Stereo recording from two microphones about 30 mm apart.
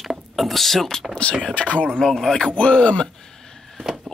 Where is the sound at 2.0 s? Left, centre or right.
Centre.